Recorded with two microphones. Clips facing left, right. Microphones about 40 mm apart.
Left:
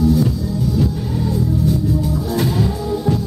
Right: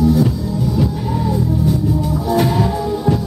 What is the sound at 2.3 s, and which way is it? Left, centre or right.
Music, centre.